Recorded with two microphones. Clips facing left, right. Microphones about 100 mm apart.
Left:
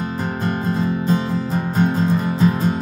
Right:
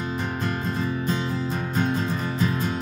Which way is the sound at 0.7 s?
40° left (ahead or behind).